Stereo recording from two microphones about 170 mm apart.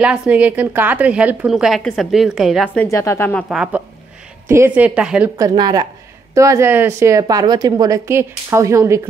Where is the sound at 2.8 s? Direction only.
15° left (ahead or behind).